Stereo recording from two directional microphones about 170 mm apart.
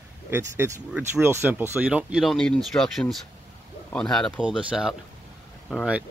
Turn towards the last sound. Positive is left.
turn(degrees=-5)  # may be behind; listen again after turning